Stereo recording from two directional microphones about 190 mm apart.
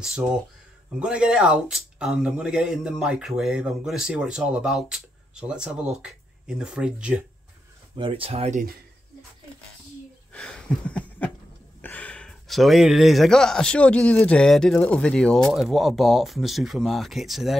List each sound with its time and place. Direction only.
0.0 s speech: centre (ahead or behind)
7.9 s speech: 30° right (ahead or behind)
10.3 s a sound: 5° left (ahead or behind)
11.8 s speech: 10° left (ahead or behind)